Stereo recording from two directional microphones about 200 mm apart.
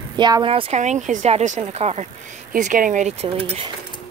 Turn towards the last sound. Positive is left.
turn(degrees=-30)  # may be behind; listen again after turning